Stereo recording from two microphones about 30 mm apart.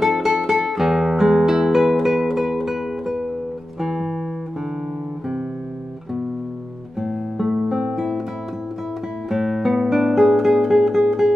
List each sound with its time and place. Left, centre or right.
0.0 s music: centre
7.0 s music: centre
9.3 s music: centre
9.9 s guitar: centre